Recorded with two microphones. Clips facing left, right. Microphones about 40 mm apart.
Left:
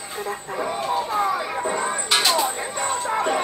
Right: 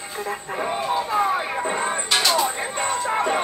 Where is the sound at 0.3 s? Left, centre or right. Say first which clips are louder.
Right 1 dB; right.